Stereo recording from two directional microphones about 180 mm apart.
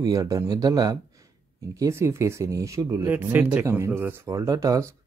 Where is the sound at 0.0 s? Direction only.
20° right (ahead or behind).